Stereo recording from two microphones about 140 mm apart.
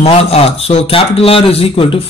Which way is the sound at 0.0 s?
45° left (ahead or behind).